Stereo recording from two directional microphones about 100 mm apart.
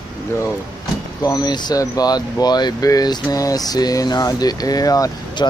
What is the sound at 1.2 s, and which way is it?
Speech, 45° left (ahead or behind).